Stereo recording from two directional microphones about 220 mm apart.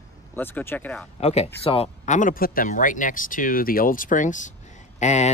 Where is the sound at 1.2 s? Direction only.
30° left (ahead or behind).